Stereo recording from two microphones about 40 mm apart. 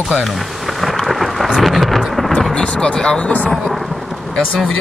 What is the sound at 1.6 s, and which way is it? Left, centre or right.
Thunder, centre.